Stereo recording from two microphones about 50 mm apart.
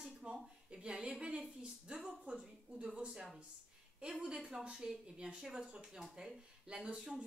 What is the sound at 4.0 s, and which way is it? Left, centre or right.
Speech, centre.